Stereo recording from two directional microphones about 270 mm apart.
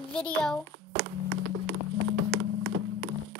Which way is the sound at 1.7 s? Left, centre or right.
Right.